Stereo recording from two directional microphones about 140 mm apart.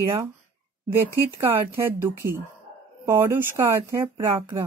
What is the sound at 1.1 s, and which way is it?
Speech, 20° right (ahead or behind).